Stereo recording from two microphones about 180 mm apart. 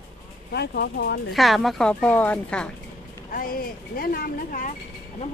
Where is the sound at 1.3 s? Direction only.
Centre (ahead or behind).